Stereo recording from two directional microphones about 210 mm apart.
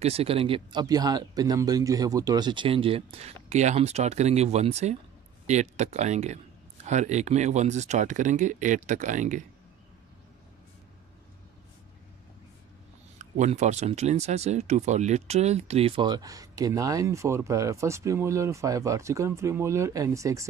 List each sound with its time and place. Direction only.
0.0 s speech: 30° right (ahead or behind)
13.2 s speech: 35° right (ahead or behind); by 20.4 s 15° right (ahead or behind)